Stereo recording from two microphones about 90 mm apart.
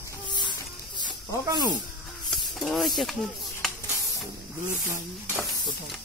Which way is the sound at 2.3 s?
Centre (ahead or behind).